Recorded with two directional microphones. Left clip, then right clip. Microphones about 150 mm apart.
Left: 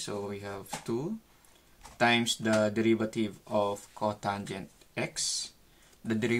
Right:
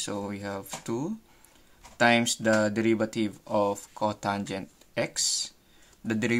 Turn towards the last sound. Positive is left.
turn(degrees=-35)  # may be behind; listen again after turning